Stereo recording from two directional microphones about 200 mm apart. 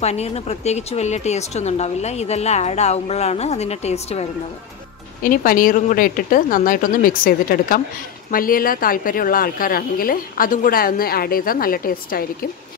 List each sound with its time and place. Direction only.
0.0 s speech: 30° left (ahead or behind)
5.2 s a woman's voice: 45° left (ahead or behind)